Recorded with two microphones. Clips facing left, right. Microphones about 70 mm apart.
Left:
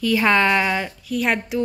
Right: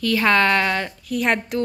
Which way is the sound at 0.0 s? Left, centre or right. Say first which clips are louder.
Even; centre.